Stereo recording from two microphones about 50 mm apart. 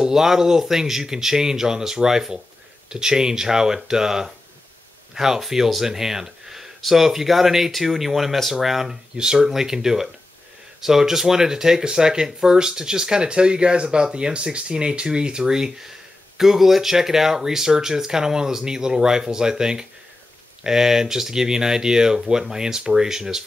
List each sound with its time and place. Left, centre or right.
0.0 s speech: centre